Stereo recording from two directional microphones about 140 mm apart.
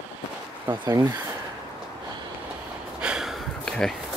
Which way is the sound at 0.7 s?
25° right (ahead or behind).